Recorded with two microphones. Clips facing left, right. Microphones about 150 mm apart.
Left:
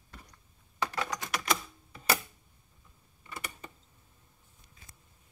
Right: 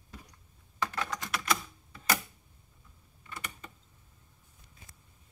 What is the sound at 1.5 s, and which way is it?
Typewriter, 15° left (ahead or behind).